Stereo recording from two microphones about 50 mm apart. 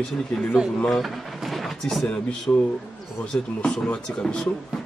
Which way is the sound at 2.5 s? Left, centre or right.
Left.